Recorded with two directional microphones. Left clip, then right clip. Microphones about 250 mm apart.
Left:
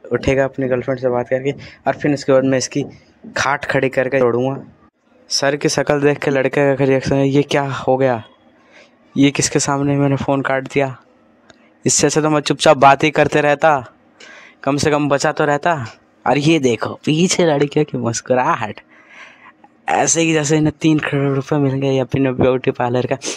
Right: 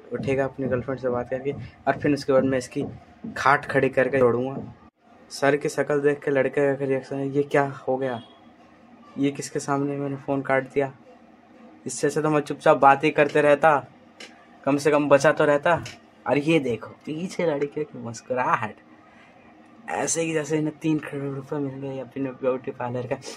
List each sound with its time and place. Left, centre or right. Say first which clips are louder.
0.1 s speech: left 9 dB; left
9.2 s speech: left 12 dB; left
19.8 s speech: left 11 dB; left